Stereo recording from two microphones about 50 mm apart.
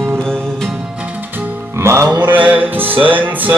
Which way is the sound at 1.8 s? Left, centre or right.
Right.